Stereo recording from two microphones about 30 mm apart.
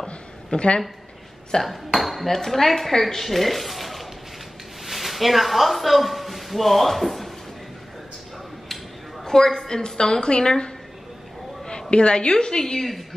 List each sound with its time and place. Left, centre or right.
0.5 s a woman's voice: left
1.5 s a woman's voice: left
2.0 s dishes: centre
2.2 s a woman's voice: centre
9.2 s a woman's voice: centre
11.9 s a woman's voice: left